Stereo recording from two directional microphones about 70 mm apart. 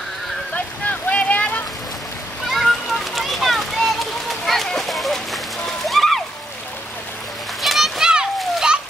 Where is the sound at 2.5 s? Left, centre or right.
Centre.